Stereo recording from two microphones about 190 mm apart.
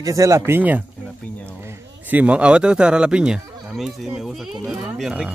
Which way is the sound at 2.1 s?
5° right (ahead or behind).